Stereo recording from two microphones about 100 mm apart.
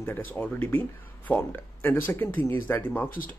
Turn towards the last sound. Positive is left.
turn(degrees=20)  # may be behind; listen again after turning